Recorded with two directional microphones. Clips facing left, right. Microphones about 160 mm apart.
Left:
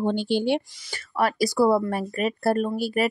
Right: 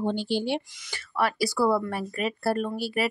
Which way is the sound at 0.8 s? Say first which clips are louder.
Left 2 dB; 45° left (ahead or behind).